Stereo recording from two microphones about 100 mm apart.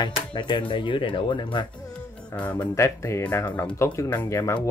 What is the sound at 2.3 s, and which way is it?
Speech, 15° left (ahead or behind).